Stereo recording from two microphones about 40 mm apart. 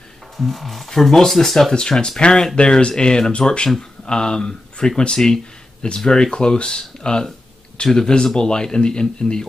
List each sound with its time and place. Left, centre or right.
0.4 s speech: centre
1.7 s a man's voice: centre